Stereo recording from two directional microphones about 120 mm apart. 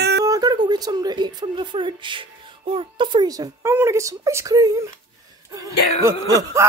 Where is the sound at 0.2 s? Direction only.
30° right (ahead or behind).